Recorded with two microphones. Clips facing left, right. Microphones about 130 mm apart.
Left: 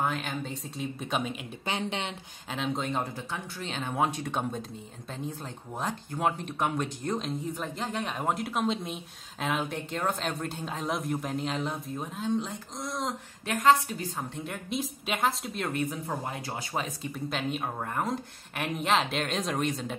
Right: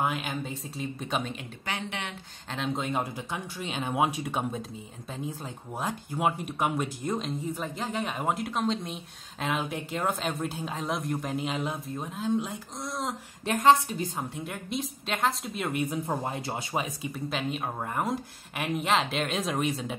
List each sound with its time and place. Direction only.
0.0 s speech: 10° right (ahead or behind)
1.7 s speech: 25° left (ahead or behind)
2.5 s speech: centre (ahead or behind)
5.8 s speech: 5° right (ahead or behind)
13.5 s speech: 25° right (ahead or behind)
14.3 s speech: centre (ahead or behind)
16.1 s speech: 25° right (ahead or behind)
16.7 s speech: 10° right (ahead or behind)
17.1 s speech: centre (ahead or behind)